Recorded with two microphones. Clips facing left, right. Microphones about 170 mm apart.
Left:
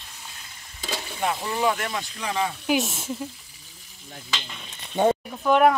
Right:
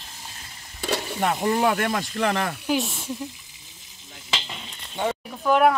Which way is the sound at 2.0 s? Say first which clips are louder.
Right 3 dB; 85° right.